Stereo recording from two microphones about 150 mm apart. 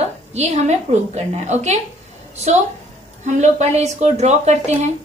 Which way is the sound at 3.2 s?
50° right (ahead or behind).